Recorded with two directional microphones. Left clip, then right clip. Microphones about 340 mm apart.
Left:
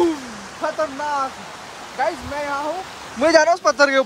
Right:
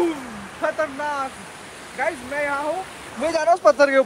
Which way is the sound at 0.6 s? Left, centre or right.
Centre.